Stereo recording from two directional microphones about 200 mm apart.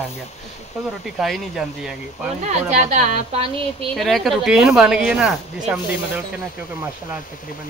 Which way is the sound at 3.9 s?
Centre (ahead or behind).